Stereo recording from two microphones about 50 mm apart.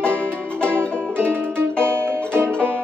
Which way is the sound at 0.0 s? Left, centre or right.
Left.